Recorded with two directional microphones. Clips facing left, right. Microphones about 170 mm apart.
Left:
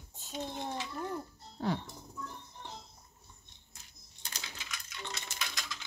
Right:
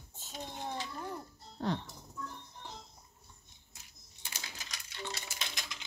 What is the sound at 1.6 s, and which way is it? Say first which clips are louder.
Speech: left 1 dB; 5° left (ahead or behind).